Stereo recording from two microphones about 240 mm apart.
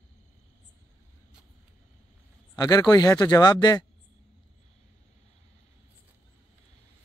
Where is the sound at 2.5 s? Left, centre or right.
Centre.